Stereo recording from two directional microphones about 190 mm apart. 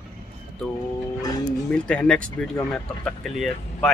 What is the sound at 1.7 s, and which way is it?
Speech, 5° left (ahead or behind).